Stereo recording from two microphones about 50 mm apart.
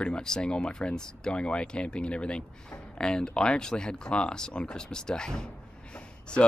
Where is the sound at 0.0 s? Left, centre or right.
Centre.